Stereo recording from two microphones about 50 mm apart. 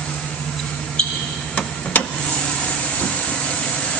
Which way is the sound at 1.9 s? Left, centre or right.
Left.